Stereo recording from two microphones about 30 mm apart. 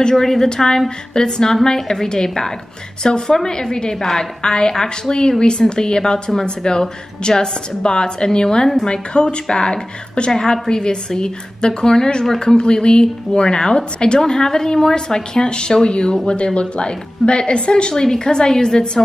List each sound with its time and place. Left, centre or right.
0.1 s a woman's voice: centre; by 14.2 s left
14.2 s a woman's voice: left
18.0 s a woman's voice: left